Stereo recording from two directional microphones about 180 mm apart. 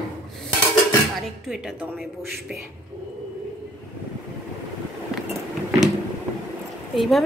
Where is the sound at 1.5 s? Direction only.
5° right (ahead or behind).